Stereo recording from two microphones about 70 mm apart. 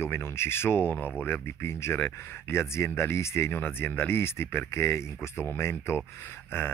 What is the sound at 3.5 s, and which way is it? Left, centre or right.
Speech, left.